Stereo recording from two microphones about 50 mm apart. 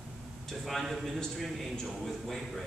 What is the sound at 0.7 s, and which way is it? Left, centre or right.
Speech, centre.